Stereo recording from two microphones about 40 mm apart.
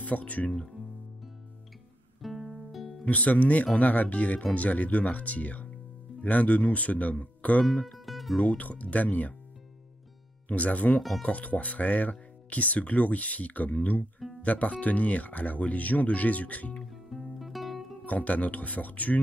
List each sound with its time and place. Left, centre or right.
0.0 s speech: left
2.2 s music: centre
3.1 s speech: left
7.8 s music: centre
8.4 s speech: left
10.5 s speech: left
11.0 s speech: centre
11.2 s speech: left
16.9 s guitar: centre
18.0 s speech: left